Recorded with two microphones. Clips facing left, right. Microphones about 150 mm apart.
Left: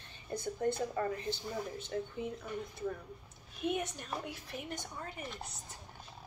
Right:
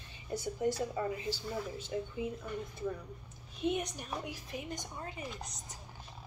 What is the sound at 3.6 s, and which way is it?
A woman's voice, 15° right (ahead or behind).